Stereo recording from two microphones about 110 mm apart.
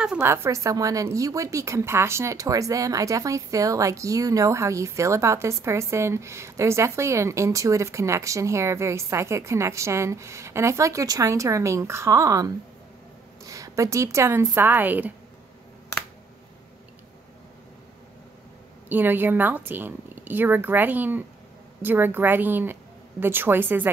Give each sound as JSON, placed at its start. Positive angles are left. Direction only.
{"t": 0.2, "sound": "a woman's voice", "side_deg": -25}
{"t": 18.9, "sound": "a woman's voice", "side_deg": -20}